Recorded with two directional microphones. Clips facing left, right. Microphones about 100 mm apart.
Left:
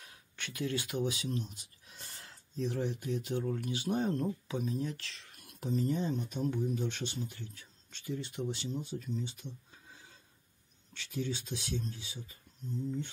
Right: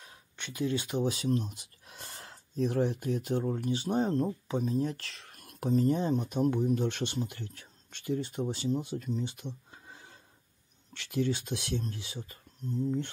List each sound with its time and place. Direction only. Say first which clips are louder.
0.0 s a sound: right 1 dB; 25° right (ahead or behind)
1.0 s speech: right 6 dB; 45° right (ahead or behind)
4.9 s speech: right 2 dB; 50° right (ahead or behind)
8.9 s speech: right 4 dB; 60° right (ahead or behind)